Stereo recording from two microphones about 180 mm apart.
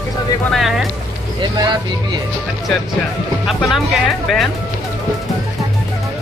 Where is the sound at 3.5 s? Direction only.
Centre (ahead or behind).